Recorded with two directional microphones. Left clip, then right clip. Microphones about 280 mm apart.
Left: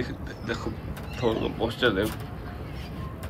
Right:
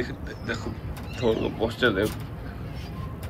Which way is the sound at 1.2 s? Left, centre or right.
Centre.